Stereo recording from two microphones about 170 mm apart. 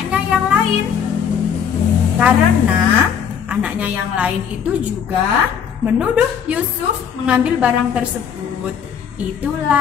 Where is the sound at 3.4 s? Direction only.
5° right (ahead or behind).